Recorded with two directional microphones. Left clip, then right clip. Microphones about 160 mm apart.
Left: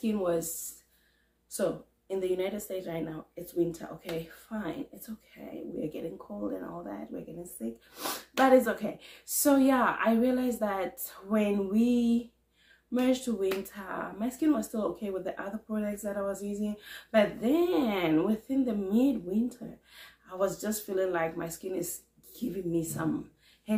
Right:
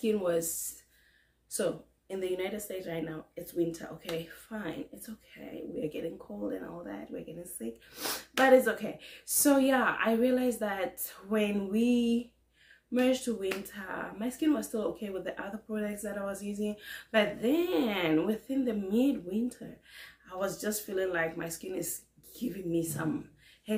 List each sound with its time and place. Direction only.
0.0 s speech: 10° right (ahead or behind)
1.6 s speech: 5° right (ahead or behind)